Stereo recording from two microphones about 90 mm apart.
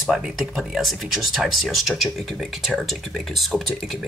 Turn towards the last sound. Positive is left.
turn(degrees=0)  # may be behind; listen again after turning